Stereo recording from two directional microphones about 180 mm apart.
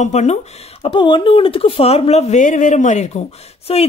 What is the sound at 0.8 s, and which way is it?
Speech, 30° left (ahead or behind).